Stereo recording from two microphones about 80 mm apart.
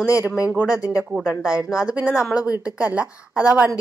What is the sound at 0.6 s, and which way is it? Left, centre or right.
Speech, left.